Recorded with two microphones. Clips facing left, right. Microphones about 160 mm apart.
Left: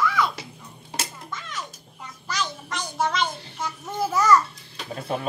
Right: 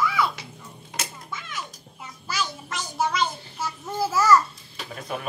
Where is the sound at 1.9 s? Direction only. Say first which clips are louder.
Even; 5° right (ahead or behind).